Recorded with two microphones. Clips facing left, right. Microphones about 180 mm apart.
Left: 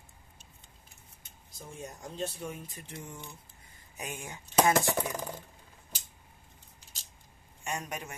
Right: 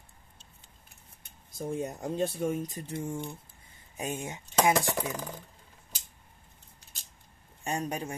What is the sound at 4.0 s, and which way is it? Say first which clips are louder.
Speech: right 6 dB; 20° right (ahead or behind).